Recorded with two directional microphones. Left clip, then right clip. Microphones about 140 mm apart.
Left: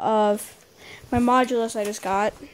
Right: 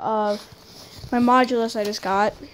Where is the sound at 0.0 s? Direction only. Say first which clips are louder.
Left 2 dB; 90° left.